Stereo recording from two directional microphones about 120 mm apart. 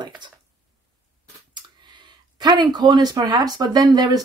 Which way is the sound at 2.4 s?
40° right (ahead or behind).